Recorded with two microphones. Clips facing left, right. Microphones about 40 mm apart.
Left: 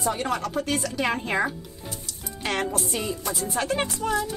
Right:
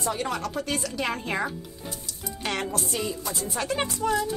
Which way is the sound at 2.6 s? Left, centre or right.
Centre.